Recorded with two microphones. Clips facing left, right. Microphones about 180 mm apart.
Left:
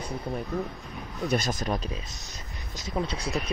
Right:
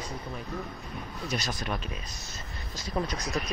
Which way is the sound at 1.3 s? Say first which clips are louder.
Left 6 dB; 45° left (ahead or behind).